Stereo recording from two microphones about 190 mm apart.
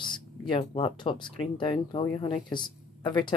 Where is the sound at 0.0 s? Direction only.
25° left (ahead or behind).